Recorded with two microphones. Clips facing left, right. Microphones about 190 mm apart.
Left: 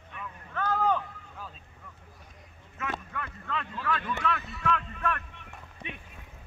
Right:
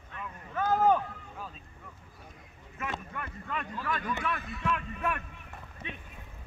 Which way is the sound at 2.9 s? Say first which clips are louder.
Left 1 dB; 15° right (ahead or behind).